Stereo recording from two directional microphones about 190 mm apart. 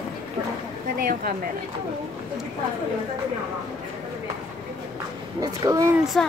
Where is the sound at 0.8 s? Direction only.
50° right (ahead or behind).